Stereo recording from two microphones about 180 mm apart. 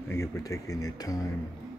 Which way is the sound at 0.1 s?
15° left (ahead or behind).